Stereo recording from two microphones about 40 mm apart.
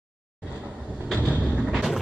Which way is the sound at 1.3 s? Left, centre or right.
Right.